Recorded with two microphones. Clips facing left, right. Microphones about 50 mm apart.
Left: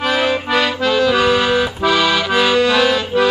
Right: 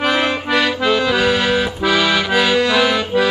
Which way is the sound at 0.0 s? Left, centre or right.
Centre.